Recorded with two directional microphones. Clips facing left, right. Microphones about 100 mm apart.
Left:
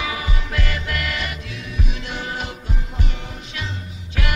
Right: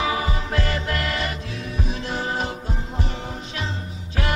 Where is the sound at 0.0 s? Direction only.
35° right (ahead or behind).